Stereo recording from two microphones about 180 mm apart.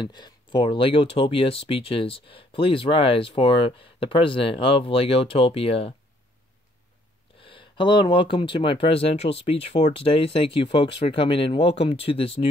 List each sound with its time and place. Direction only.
0.0 s speech: 25° left (ahead or behind)
7.4 s speech: 25° left (ahead or behind)